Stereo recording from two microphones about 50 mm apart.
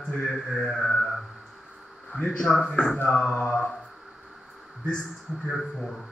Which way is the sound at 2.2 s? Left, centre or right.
Centre.